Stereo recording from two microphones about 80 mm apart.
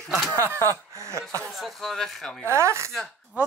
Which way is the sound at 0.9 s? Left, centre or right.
Right.